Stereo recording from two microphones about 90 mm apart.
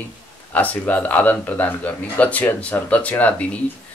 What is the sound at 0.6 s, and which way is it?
Speech, 15° left (ahead or behind).